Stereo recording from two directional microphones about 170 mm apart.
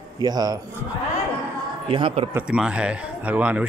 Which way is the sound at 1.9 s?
30° right (ahead or behind).